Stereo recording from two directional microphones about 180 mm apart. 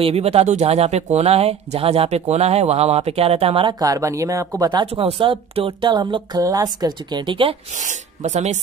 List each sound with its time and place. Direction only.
0.0 s speech: 35° right (ahead or behind)
3.8 s speech: 20° right (ahead or behind)
7.8 s speech: 40° right (ahead or behind)